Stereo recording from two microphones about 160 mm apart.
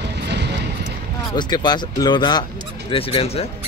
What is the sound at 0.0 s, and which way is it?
Vehicle, 90° right.